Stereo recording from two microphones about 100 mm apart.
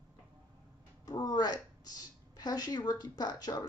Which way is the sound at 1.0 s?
40° left (ahead or behind).